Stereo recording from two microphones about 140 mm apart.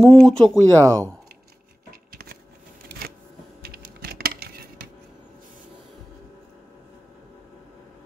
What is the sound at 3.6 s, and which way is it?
Coin, 90° right.